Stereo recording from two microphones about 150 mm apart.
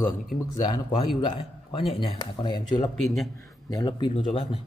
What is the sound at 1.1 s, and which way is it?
A man's voice, 35° left (ahead or behind).